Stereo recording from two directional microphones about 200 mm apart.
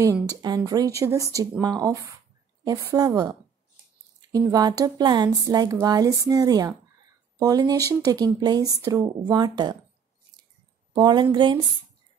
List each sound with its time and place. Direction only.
0.0 s speech: 15° right (ahead or behind)
10.9 s a woman's voice: 20° right (ahead or behind)